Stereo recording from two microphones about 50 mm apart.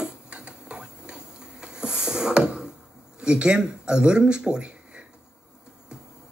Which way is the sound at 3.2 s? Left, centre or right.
Centre.